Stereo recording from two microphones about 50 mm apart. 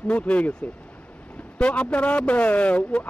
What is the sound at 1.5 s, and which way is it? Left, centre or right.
A man's voice, left.